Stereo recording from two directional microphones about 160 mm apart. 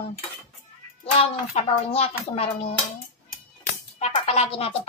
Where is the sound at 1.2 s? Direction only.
40° left (ahead or behind).